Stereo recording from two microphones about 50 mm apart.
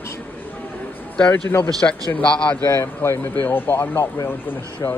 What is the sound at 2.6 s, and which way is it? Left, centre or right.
Speech, left.